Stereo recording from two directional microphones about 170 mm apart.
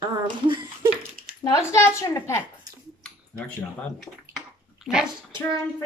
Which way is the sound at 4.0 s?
Centre (ahead or behind).